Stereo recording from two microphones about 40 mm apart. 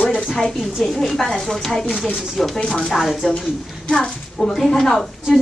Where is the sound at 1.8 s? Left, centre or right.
Centre.